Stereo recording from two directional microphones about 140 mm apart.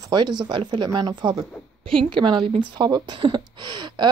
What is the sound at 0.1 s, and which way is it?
A woman's voice, 30° right (ahead or behind).